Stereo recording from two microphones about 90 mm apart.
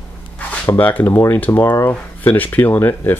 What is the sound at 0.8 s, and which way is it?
Speech, 20° left (ahead or behind).